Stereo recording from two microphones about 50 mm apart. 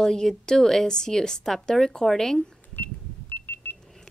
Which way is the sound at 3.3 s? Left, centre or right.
Left.